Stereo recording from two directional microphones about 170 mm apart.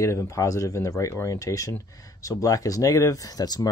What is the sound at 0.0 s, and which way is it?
Speech, 15° left (ahead or behind).